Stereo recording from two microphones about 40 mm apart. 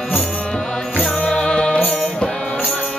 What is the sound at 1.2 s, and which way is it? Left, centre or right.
Music, left.